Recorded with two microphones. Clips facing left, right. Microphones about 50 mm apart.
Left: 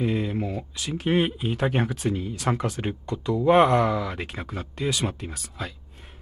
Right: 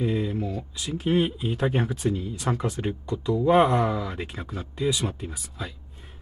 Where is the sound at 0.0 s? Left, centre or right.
Left.